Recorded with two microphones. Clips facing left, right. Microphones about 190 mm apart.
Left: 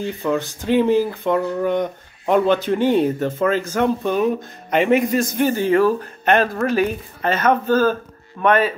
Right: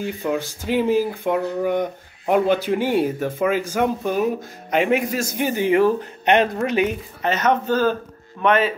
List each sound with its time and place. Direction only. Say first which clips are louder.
0.0 s speech: left 2 dB; 10° right (ahead or behind)
5.4 s speech: even; 15° right (ahead or behind)
8.5 s a man's voice: left 1 dB; 45° left (ahead or behind)